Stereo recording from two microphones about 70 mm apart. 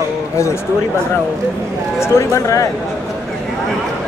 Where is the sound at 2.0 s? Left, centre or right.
Left.